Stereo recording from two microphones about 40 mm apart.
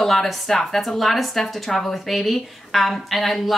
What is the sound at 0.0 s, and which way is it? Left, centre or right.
A woman's voice, centre.